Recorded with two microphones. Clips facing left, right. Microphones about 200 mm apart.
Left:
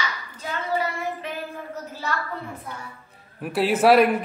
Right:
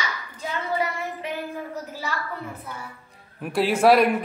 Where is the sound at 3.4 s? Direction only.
5° left (ahead or behind).